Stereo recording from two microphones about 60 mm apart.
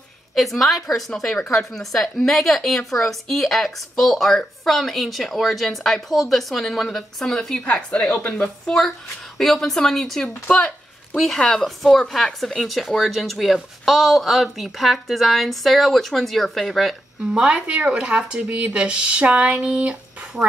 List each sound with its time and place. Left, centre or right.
0.3 s a woman's voice: centre
7.6 s a woman's voice: left
9.4 s a woman's voice: centre
17.2 s speech: centre
19.8 s a sound: centre